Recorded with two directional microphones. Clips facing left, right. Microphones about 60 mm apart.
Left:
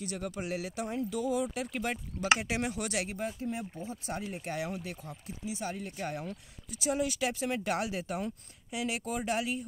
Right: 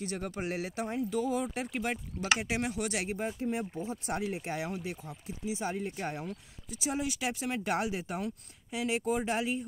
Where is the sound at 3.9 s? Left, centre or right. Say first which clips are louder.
Right 3 dB; right.